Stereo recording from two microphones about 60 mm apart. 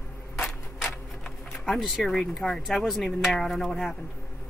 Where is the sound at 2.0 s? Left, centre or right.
Centre.